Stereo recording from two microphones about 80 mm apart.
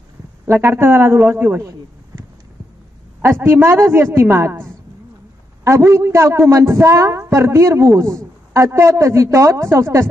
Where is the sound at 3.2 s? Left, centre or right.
Right.